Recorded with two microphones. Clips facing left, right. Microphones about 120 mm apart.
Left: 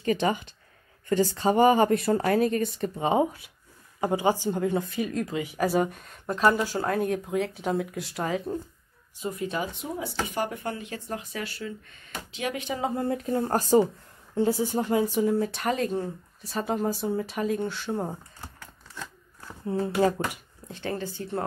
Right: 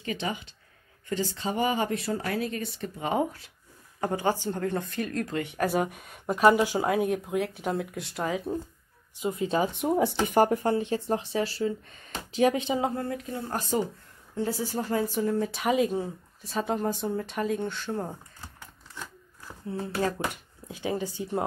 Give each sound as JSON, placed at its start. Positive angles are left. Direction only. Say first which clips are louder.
{"t": 0.0, "sound": "speech", "louder": "left 7 dB", "side_deg": 45}
{"t": 3.0, "sound": "speech", "louder": "left 4 dB", "side_deg": 20}
{"t": 9.2, "sound": "speech", "louder": "right 4 dB", "side_deg": -25}
{"t": 9.8, "sound": "speech", "louder": "right 7 dB", "side_deg": -60}
{"t": 10.5, "sound": "speech", "louder": "right 8 dB", "side_deg": -30}
{"t": 13.1, "sound": "speech", "louder": "left 7 dB", "side_deg": 45}
{"t": 14.3, "sound": "speech", "louder": "left 5 dB", "side_deg": 25}
{"t": 15.4, "sound": "speech", "louder": "right 2 dB", "side_deg": 0}
{"t": 20.0, "sound": "speech", "louder": "left 5 dB", "side_deg": 20}
{"t": 20.6, "sound": "speech", "louder": "right 1 dB", "side_deg": -10}